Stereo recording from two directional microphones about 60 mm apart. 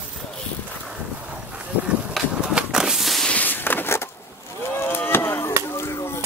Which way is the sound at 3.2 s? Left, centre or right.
Left.